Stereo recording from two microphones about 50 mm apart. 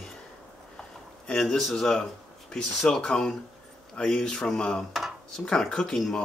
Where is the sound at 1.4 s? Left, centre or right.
Centre.